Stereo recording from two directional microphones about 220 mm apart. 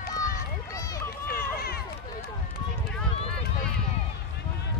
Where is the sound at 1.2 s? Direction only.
45° left (ahead or behind).